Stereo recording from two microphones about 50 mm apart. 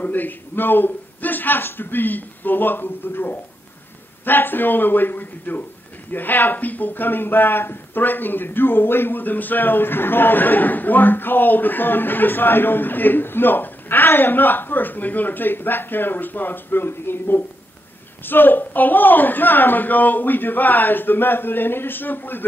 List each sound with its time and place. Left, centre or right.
0.0 s speech: left